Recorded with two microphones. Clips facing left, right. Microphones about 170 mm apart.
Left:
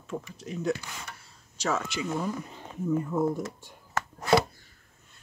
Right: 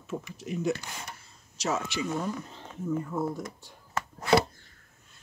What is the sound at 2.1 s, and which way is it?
Speech, 10° left (ahead or behind).